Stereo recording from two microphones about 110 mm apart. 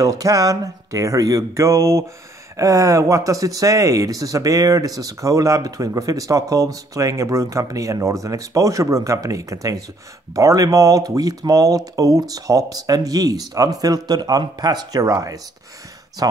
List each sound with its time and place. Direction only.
0.0 s speech: 30° right (ahead or behind)